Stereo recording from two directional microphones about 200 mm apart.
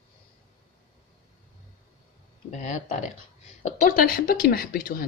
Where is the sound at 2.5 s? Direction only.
40° left (ahead or behind).